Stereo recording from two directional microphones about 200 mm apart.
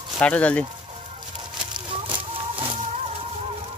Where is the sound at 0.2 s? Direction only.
5° left (ahead or behind).